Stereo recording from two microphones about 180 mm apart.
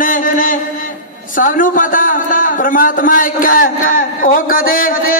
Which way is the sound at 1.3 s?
50° left (ahead or behind).